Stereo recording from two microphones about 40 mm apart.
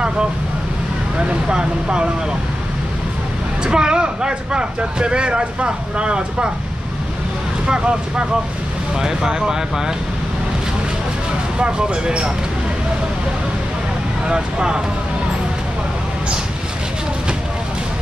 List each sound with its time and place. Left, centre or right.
1.5 s speech: right
3.6 s speech: right
7.6 s speech: right
11.5 s speech: right
14.2 s speech: right